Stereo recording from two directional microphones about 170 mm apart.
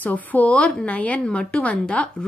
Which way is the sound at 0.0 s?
10° left (ahead or behind).